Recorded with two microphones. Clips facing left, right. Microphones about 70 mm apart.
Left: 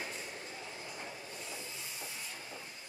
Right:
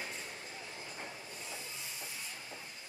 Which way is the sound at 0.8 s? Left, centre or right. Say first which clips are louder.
Even; centre.